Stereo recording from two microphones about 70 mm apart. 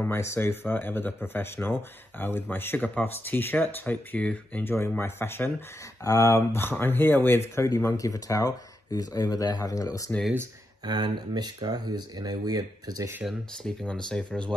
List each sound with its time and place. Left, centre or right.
0.1 s speech: left; by 4.6 s centre
4.6 s speech: left
6.0 s speech: left
6.6 s speech: left
7.6 s speech: left
10.9 s speech: right
13.8 s speech: centre